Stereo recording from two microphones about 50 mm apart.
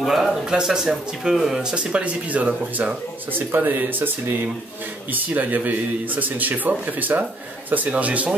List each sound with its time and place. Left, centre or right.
0.0 s speech: centre
1.6 s speech: centre
3.3 s speech: right